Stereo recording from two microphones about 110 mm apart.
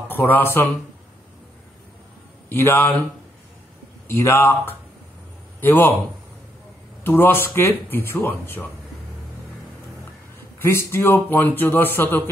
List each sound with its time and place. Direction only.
0.1 s a man's voice: 20° left (ahead or behind)
2.5 s speech: 20° left (ahead or behind)
4.2 s speech: 25° left (ahead or behind)
7.0 s speech: 20° left (ahead or behind)
10.6 s speech: 20° left (ahead or behind)